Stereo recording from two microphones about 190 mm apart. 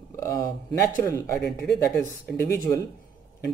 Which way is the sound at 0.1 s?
15° left (ahead or behind).